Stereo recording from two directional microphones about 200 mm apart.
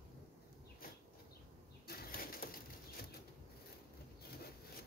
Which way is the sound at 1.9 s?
50° left (ahead or behind).